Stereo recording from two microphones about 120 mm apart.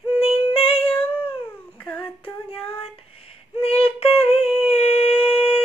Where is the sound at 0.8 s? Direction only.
10° left (ahead or behind).